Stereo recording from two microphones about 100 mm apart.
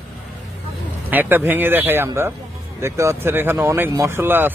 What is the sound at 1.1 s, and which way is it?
Speech, 20° right (ahead or behind).